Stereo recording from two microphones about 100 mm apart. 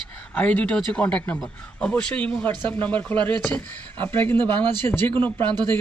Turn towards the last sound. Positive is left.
turn(degrees=20)  # may be behind; listen again after turning